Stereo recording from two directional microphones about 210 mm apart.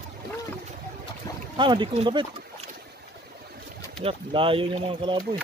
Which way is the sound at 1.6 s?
20° right (ahead or behind).